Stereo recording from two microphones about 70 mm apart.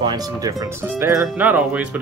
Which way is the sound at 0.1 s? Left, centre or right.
Right.